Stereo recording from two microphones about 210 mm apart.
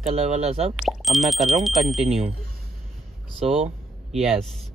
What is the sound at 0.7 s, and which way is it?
Speech, centre (ahead or behind).